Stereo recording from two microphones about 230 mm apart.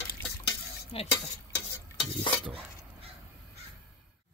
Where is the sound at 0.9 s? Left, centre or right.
Left.